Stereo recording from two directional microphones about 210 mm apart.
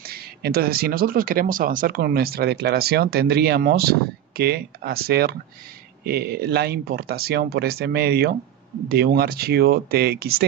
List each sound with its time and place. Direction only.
0.0 s speech: 45° right (ahead or behind)